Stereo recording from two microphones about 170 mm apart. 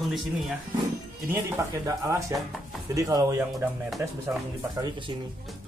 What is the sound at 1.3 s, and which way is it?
Speech, 15° right (ahead or behind).